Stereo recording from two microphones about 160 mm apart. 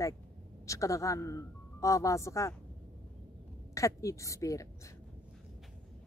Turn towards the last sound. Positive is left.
turn(degrees=20)  # may be behind; listen again after turning